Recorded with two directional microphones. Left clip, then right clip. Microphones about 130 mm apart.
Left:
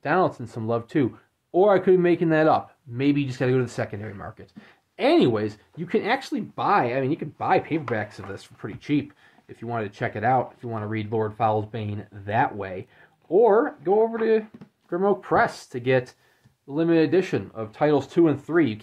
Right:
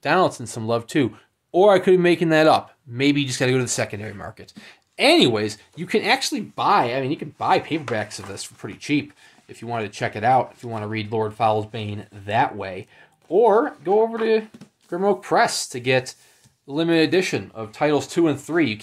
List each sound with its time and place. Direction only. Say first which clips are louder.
0.0 s speech: right 3 dB; 20° right (ahead or behind)
16.6 s speech: right 2 dB; 20° right (ahead or behind)
17.2 s speech: right 2 dB; 5° right (ahead or behind)